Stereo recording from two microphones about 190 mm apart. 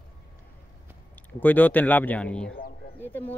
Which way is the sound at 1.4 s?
10° left (ahead or behind).